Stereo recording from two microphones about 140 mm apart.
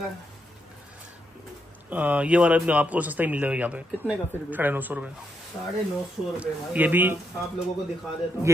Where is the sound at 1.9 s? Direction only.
10° right (ahead or behind).